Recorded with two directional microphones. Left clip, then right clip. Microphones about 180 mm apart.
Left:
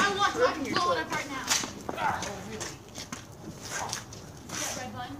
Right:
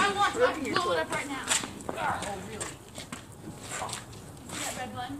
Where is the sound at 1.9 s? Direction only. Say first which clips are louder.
Left 1 dB; centre (ahead or behind).